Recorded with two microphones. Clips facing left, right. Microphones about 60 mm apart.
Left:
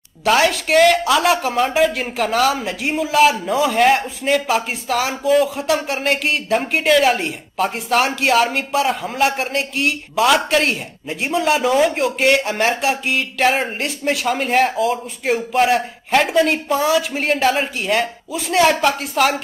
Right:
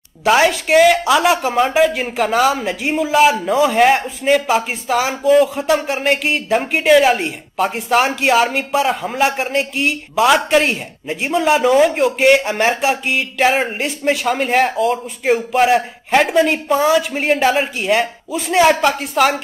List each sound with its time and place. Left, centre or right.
0.2 s a man's voice: centre